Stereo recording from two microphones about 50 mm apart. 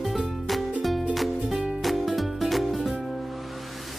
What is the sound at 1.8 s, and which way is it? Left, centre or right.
Music, centre.